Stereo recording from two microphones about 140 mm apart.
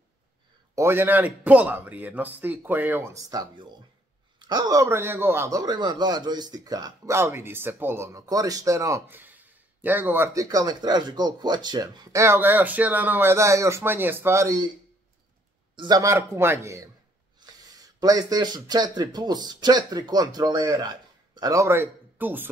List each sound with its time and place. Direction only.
0.7 s a man's voice: 15° right (ahead or behind)
15.7 s speech: 25° right (ahead or behind)